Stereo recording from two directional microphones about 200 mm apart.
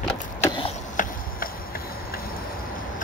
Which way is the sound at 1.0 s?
40° left (ahead or behind).